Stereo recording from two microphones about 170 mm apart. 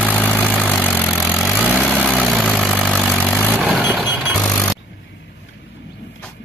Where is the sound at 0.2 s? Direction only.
5° left (ahead or behind).